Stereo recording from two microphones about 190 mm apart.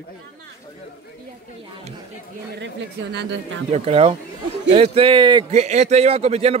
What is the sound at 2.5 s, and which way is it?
Speech, 65° right (ahead or behind).